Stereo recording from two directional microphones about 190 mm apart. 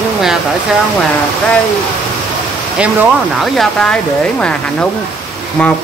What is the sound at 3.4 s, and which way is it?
Speech, 5° left (ahead or behind).